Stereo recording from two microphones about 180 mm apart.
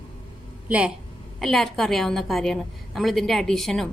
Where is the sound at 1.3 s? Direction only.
Centre (ahead or behind).